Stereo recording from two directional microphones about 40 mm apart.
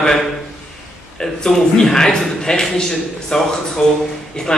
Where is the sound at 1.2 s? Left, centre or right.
Centre.